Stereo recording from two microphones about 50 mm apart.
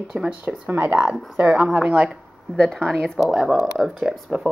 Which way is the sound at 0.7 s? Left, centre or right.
Right.